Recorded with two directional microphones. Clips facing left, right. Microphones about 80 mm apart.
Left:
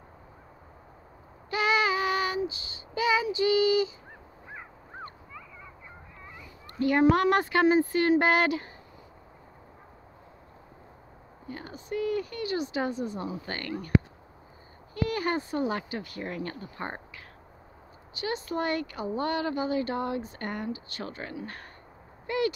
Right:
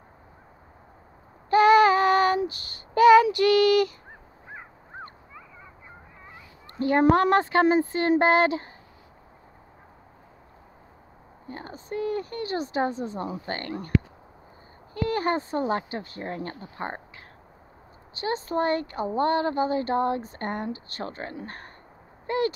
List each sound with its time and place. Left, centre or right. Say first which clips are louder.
1.5 s child singing: right 9 dB; right
5.0 s a sound: left 1 dB; right
6.8 s speech: right 2 dB; right
11.4 s speech: right 1 dB; right
15.0 s speech: right 5 dB; right
18.1 s speech: right 4 dB; right
22.2 s a sound: right 2 dB; right